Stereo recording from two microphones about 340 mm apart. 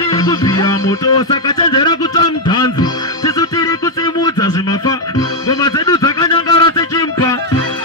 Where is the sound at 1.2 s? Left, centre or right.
Centre.